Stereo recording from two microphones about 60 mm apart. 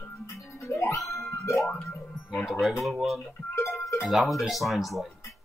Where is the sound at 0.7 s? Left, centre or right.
Left.